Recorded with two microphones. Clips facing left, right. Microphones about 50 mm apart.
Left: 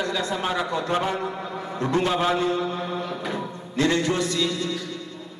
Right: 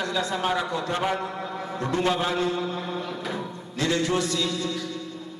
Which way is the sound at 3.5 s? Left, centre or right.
Left.